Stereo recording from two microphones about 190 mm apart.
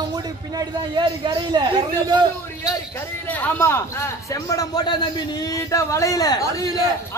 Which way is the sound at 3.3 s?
10° left (ahead or behind).